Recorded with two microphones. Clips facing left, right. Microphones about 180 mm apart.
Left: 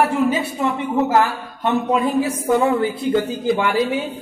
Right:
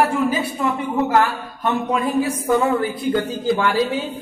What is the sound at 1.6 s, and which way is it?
Speech, 25° left (ahead or behind).